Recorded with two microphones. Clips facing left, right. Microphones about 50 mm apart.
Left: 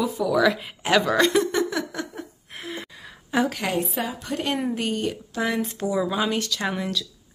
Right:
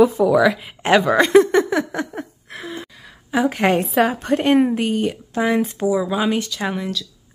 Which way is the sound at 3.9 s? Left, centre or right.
Right.